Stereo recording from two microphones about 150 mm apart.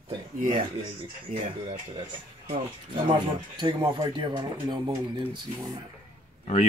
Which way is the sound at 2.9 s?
30° right (ahead or behind).